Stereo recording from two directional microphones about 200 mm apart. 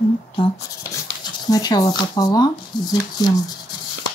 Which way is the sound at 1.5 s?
20° left (ahead or behind).